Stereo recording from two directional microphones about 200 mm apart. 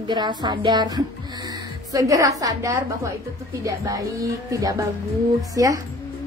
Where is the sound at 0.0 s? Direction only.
20° right (ahead or behind).